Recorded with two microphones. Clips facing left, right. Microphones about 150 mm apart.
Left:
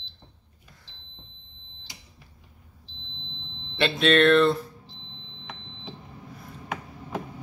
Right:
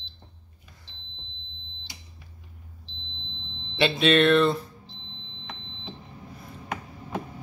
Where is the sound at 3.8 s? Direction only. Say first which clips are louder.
Even; centre (ahead or behind).